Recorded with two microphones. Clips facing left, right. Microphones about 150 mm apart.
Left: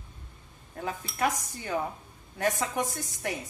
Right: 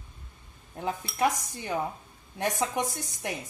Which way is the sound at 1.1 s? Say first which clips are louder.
Right 2 dB; 15° right (ahead or behind).